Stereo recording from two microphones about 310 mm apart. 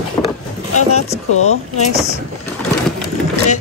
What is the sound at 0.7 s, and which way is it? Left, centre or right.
Speech, left.